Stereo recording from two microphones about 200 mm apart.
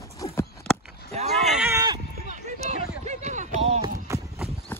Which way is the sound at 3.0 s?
35° right (ahead or behind).